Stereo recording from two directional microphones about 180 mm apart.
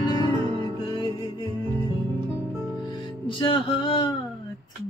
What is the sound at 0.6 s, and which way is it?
Music, 25° left (ahead or behind).